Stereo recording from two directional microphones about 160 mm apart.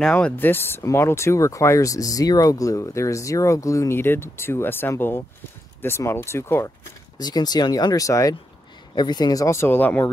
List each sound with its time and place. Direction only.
0.0 s speech: 10° left (ahead or behind)